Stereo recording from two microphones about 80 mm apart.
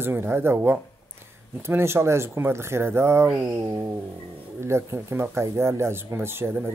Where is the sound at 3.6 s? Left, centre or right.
Right.